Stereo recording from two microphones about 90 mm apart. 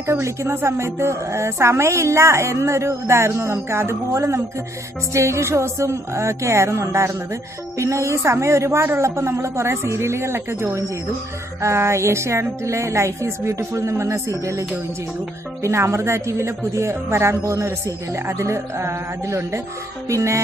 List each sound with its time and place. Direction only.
0.0 s speech: 30° right (ahead or behind)